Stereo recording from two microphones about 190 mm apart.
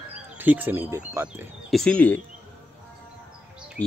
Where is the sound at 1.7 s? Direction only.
5° left (ahead or behind).